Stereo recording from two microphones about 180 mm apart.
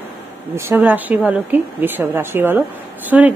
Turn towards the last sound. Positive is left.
turn(degrees=-10)  # may be behind; listen again after turning